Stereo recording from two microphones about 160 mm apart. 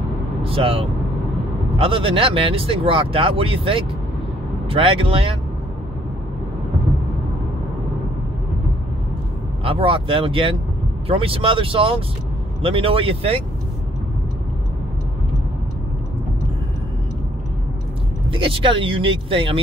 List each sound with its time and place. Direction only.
0.4 s speech: 35° right (ahead or behind)
9.7 s speech: 35° right (ahead or behind)
18.3 s speech: 35° right (ahead or behind)